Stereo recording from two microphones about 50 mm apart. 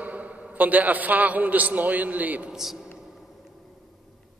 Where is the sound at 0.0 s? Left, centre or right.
Right.